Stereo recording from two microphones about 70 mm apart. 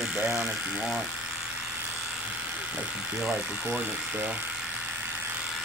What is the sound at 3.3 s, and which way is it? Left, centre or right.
Speech, centre.